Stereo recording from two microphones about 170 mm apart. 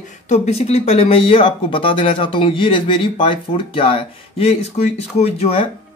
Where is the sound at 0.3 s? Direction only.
40° left (ahead or behind).